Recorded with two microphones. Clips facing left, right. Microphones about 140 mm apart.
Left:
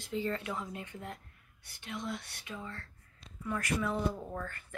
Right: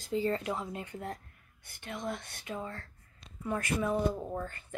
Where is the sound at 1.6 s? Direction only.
50° right (ahead or behind).